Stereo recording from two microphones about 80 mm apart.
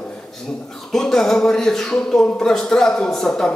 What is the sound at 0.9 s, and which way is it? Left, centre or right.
Speech, centre.